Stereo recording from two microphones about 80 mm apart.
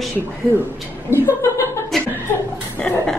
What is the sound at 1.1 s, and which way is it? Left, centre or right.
Speech, left.